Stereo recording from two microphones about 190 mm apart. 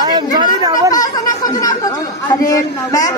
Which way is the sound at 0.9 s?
20° left (ahead or behind).